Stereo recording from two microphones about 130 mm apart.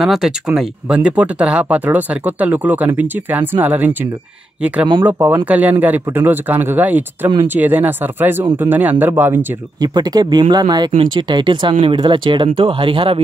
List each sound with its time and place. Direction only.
0.0 s speech: centre (ahead or behind); by 9.5 s 15° right (ahead or behind)
9.8 s speech: 30° right (ahead or behind)